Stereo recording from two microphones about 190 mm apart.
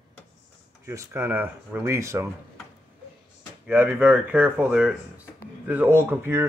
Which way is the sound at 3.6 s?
10° right (ahead or behind).